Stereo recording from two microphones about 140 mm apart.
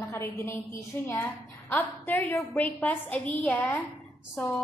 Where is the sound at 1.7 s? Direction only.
15° left (ahead or behind).